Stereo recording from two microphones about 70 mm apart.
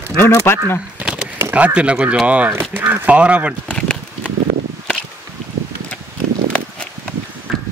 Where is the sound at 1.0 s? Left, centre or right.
Centre.